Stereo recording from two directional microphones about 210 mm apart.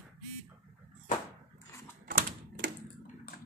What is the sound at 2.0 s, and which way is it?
Typewriter, 45° right (ahead or behind).